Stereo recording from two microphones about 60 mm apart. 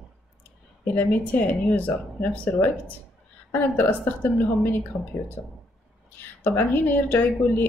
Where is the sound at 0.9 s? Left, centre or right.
Left.